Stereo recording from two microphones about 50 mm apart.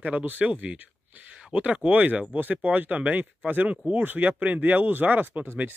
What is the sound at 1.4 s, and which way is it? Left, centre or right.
Speech, right.